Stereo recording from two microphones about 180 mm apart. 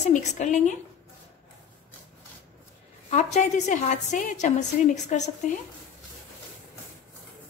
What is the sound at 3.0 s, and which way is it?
A woman's voice, 40° left (ahead or behind).